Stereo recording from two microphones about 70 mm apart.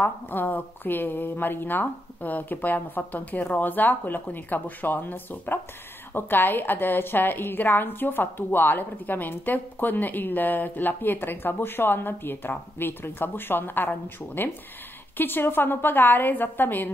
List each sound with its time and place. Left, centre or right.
0.0 s a woman's voice: left